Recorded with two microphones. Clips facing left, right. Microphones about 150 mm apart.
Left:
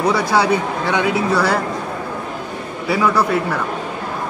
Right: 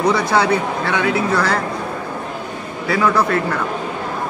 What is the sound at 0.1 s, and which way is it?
Speech, 10° left (ahead or behind).